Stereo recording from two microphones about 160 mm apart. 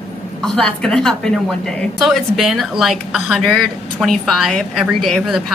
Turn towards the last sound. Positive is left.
turn(degrees=0)  # may be behind; listen again after turning